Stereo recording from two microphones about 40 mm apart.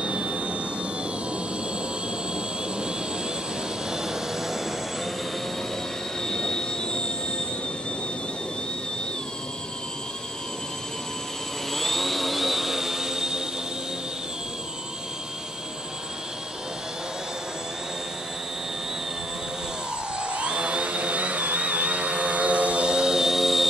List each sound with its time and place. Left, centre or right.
0.0 s vehicle: right
3.9 s jet engine: centre
6.2 s train: centre
11.7 s a sound: centre
20.3 s vehicle: right; by 23.7 s centre